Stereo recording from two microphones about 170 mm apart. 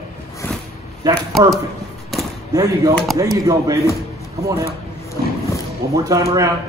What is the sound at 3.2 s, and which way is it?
A man's voice, 20° right (ahead or behind).